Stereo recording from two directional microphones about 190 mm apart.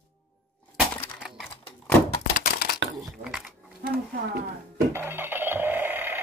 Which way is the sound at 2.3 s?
50° left (ahead or behind).